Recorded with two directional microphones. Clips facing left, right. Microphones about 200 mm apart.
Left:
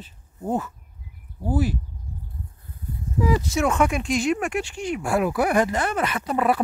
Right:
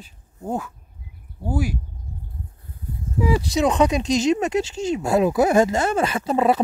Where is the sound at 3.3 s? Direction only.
15° right (ahead or behind).